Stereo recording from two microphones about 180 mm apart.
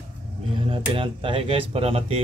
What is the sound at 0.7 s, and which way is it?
Speech, 30° right (ahead or behind).